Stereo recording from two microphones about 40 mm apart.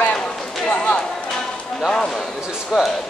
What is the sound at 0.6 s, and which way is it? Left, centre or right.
Speech, left.